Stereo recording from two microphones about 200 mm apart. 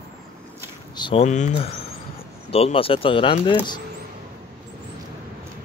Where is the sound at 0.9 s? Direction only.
25° left (ahead or behind).